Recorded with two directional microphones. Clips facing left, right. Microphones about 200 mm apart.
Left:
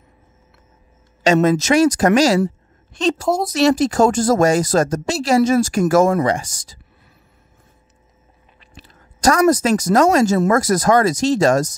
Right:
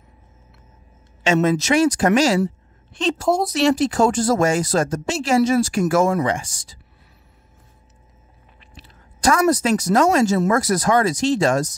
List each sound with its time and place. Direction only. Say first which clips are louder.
1.2 s a woman's voice: left 3 dB; 40° left (ahead or behind)
8.5 s speech: left 2 dB; 45° left (ahead or behind)